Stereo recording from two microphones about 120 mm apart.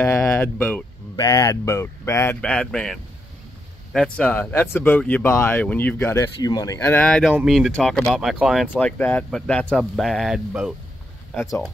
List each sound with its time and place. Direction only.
0.0 s speech: 20° left (ahead or behind)
1.1 s speech: 30° left (ahead or behind)
2.4 s speech: 5° left (ahead or behind)
6.1 s speech: 30° left (ahead or behind)
6.9 s speech: 10° left (ahead or behind)
8.7 s speech: 10° left (ahead or behind)